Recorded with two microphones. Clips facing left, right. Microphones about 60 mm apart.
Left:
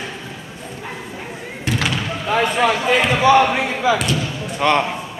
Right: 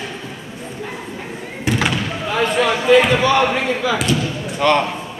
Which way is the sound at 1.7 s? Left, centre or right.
Centre.